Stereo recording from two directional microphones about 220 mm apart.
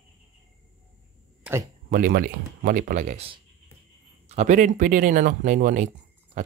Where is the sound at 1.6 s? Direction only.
40° right (ahead or behind).